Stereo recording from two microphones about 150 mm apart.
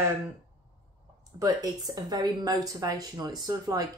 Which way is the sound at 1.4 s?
25° right (ahead or behind).